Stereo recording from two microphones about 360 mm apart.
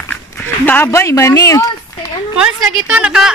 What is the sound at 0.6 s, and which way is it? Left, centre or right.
Speech, centre.